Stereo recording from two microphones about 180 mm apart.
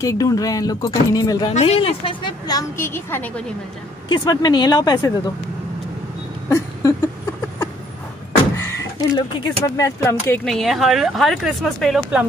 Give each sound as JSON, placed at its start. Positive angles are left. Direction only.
{"t": 0.0, "sound": "a woman's voice", "side_deg": 20}
{"t": 1.5, "sound": "a woman's voice", "side_deg": 35}
{"t": 4.1, "sound": "a woman's voice", "side_deg": 25}
{"t": 6.5, "sound": "a sound", "side_deg": 15}
{"t": 9.1, "sound": "speech", "side_deg": 20}
{"t": 10.4, "sound": "speech", "side_deg": 0}